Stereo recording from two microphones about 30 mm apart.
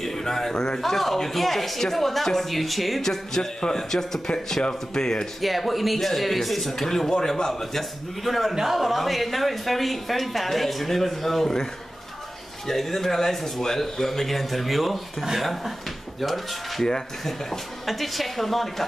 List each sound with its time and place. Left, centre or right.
0.0 s speech: centre
3.0 s speech: centre
5.4 s speech: centre
6.9 s speech: centre
7.7 s speech: centre
12.6 s speech: centre